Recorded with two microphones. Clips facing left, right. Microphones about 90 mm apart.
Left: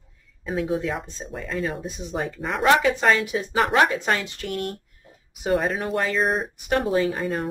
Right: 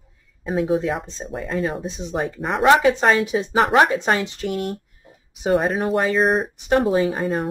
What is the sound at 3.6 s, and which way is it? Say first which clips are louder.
Speech: right 3 dB; 35° right (ahead or behind).